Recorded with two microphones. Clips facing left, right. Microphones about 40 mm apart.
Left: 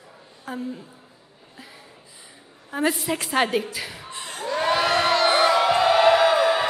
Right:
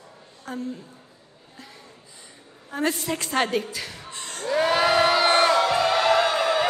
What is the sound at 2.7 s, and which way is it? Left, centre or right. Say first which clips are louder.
A woman's voice: left 2 dB; centre.